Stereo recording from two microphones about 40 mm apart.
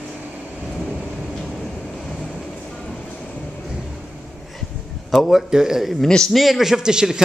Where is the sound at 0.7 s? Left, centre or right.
Centre.